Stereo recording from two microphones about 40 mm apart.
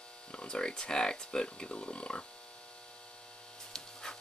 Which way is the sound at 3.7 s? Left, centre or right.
Centre.